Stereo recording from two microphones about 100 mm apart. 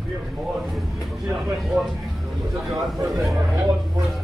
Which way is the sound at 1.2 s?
5° right (ahead or behind).